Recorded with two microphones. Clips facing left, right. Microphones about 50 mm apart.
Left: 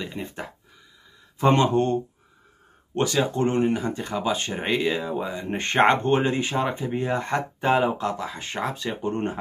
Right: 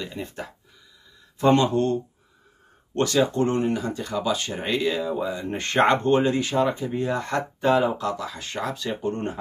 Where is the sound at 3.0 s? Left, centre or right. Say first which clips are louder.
Right 2 dB; centre.